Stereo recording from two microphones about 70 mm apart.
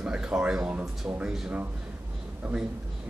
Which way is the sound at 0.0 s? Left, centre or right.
Centre.